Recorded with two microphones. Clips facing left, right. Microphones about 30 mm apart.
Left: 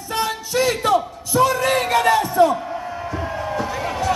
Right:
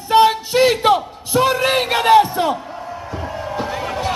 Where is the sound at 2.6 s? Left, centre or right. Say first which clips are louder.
Left 2 dB; centre.